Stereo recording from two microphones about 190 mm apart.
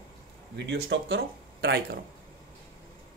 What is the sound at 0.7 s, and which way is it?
Speech, 70° right (ahead or behind).